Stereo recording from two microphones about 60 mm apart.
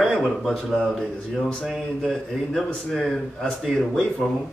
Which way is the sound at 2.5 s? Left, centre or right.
Centre.